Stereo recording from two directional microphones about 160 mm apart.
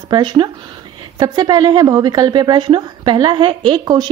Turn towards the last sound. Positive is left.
turn(degrees=-30)  # may be behind; listen again after turning